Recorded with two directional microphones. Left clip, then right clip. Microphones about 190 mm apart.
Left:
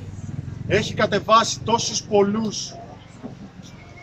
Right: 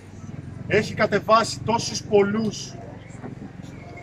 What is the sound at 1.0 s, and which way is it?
A man's voice, 10° right (ahead or behind).